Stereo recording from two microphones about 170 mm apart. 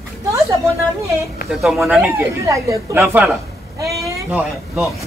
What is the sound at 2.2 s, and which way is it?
Speech, 15° right (ahead or behind).